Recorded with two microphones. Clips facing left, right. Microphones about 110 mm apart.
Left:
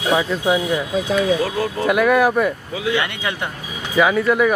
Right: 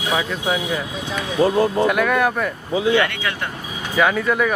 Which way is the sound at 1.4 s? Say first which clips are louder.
Right 5 dB; 25° right (ahead or behind).